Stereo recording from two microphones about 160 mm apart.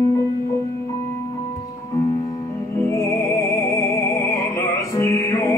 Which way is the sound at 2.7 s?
20° left (ahead or behind).